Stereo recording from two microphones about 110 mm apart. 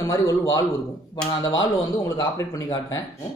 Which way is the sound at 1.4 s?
40° left (ahead or behind).